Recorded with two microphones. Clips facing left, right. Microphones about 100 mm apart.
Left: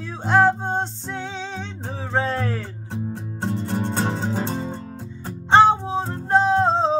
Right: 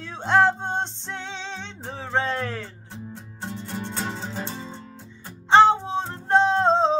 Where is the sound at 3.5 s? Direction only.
50° left (ahead or behind).